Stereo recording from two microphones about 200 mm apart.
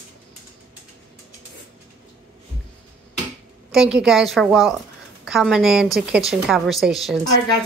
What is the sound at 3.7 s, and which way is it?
A woman's voice, 5° right (ahead or behind).